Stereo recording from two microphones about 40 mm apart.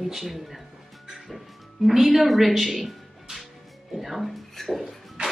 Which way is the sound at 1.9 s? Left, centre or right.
Centre.